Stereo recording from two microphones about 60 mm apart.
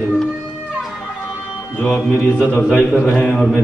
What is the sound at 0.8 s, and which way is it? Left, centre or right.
Music, centre.